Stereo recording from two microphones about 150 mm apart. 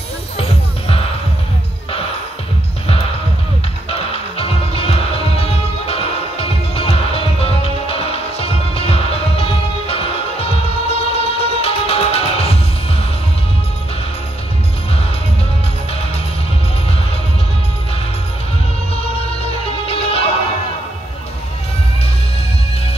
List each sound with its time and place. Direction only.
0.4 s music: 40° left (ahead or behind)
3.9 s music: 40° left (ahead or behind)
19.6 s music: 40° left (ahead or behind)